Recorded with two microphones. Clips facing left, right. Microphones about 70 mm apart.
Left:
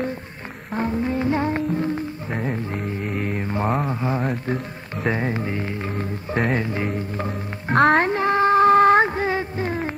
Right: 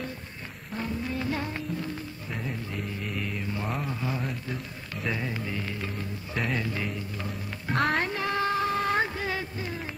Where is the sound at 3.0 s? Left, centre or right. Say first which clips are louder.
Left 8 dB; left.